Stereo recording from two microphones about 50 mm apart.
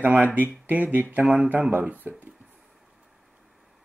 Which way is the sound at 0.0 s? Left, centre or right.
Right.